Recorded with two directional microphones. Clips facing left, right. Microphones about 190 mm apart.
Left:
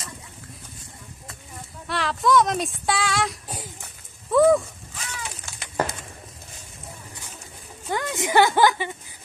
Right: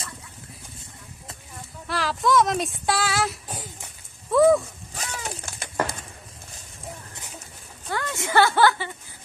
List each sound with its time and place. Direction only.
1.9 s speech: centre (ahead or behind)
2.9 s female singing: centre (ahead or behind)
4.9 s a sound: 45° right (ahead or behind)
7.9 s speech: 15° left (ahead or behind)